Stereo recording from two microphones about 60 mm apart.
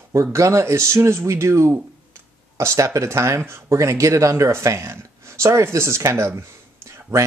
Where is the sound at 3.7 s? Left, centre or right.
Right.